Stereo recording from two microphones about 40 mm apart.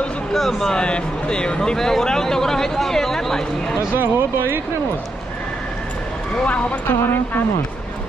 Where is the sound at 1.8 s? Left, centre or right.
Centre.